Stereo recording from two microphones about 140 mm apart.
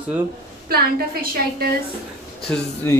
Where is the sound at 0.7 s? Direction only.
90° right.